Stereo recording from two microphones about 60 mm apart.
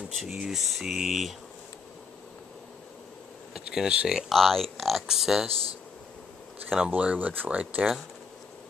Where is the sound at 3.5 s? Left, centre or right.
Centre.